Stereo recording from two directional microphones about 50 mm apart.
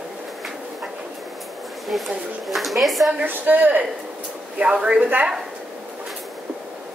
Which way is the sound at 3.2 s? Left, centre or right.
Right.